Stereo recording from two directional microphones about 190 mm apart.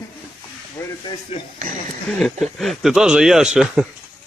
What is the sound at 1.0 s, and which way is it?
Speech, 25° left (ahead or behind).